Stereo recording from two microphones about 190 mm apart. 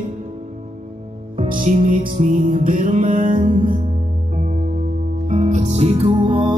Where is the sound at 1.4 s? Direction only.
45° right (ahead or behind).